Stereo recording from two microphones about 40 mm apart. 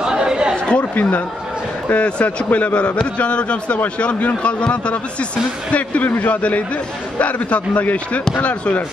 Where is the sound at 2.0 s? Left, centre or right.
Left.